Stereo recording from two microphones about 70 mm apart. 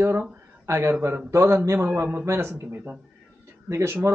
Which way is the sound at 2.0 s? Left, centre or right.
Right.